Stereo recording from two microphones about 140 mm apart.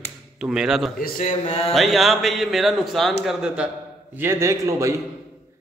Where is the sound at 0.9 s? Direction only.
90° left.